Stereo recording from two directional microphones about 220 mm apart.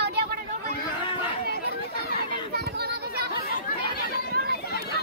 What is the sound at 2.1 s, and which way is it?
Chatter, 45° right (ahead or behind).